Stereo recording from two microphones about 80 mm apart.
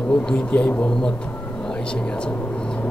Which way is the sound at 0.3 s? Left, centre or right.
Centre.